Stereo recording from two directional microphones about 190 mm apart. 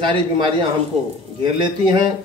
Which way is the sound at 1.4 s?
25° right (ahead or behind).